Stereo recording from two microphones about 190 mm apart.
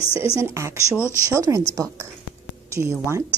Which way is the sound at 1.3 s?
15° right (ahead or behind).